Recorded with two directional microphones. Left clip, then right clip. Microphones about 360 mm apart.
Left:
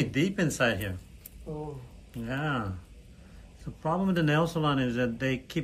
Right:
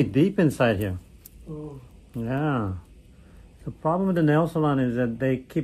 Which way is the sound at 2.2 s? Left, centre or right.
Centre.